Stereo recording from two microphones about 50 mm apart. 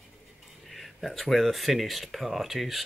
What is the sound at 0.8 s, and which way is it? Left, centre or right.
Speech, centre.